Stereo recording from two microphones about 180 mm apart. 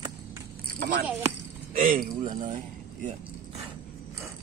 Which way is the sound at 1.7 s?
50° right (ahead or behind).